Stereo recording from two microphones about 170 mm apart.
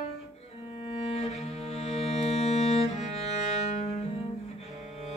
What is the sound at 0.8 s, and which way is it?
Music, 35° left (ahead or behind).